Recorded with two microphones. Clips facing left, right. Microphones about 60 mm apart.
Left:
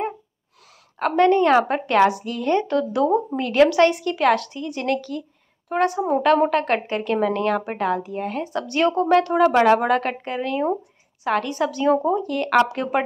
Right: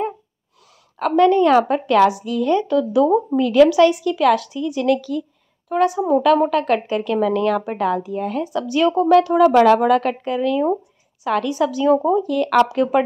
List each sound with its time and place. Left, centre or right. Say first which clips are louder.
1.1 s a woman's voice: right 3 dB; left
2.0 s a woman's voice: right 3 dB; left
8.6 s speech: right 3 dB; left
9.3 s a woman's voice: right 3 dB; left
12.7 s speech: right 6 dB; left